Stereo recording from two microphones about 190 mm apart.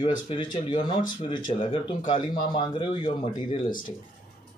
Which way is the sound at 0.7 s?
25° left (ahead or behind).